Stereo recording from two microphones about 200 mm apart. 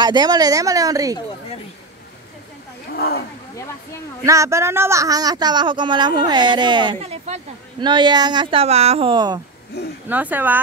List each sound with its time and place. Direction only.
0.0 s a woman's voice: 20° right (ahead or behind)
3.0 s speech: 50° left (ahead or behind)
4.2 s speech: 15° right (ahead or behind)
10.0 s a woman's voice: 10° right (ahead or behind)